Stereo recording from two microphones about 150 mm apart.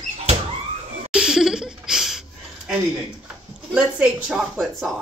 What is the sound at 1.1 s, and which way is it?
Laughter, 5° right (ahead or behind).